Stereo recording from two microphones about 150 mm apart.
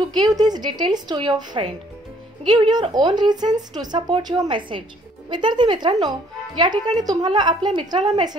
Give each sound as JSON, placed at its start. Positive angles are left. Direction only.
{"t": 0.1, "sound": "speech", "side_deg": -25}